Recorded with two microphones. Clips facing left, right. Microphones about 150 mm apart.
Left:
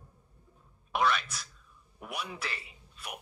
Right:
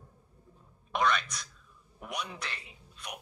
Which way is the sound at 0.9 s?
5° left (ahead or behind).